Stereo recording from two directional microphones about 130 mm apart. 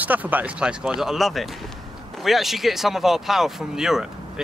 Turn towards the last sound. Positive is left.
turn(degrees=-5)  # may be behind; listen again after turning